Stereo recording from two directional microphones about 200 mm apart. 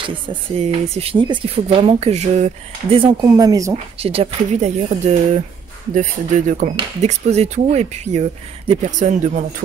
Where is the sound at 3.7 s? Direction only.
30° right (ahead or behind).